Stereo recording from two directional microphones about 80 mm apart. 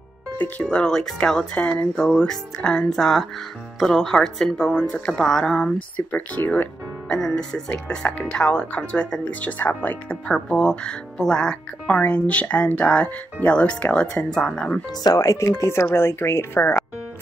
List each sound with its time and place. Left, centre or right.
0.4 s speech: centre
5.9 s speech: left
7.1 s speech: centre
10.2 s speech: centre
15.0 s speech: left